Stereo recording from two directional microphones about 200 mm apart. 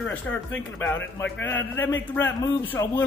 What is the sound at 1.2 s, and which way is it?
A man's voice, 10° left (ahead or behind).